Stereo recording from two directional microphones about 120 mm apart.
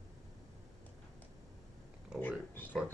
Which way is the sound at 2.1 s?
15° left (ahead or behind).